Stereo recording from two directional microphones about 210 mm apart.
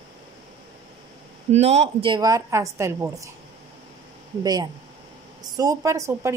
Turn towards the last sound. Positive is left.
turn(degrees=-15)  # may be behind; listen again after turning